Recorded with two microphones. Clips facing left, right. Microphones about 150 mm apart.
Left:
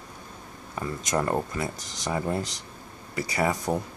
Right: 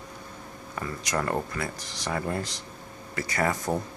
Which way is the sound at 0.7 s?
20° left (ahead or behind).